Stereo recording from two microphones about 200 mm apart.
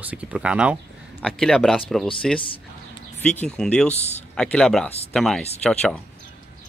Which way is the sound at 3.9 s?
35° left (ahead or behind).